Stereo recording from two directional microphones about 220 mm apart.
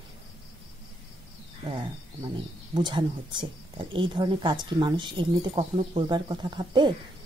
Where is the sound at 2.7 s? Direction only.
20° right (ahead or behind).